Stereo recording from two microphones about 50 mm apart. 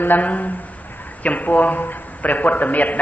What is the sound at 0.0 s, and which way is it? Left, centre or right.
A man's voice, left.